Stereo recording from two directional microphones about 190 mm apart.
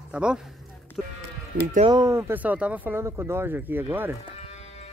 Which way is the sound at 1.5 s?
55° right (ahead or behind).